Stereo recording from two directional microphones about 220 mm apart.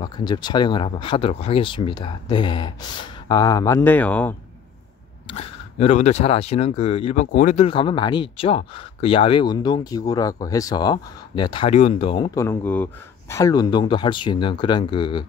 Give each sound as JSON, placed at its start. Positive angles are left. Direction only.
{"t": 0.0, "sound": "speech", "side_deg": 20}
{"t": 5.2, "sound": "speech", "side_deg": 25}